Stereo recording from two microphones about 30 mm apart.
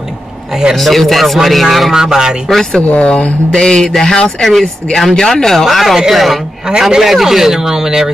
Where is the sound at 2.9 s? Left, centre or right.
Left.